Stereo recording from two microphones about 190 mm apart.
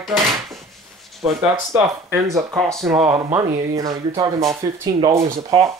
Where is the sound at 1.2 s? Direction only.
10° right (ahead or behind).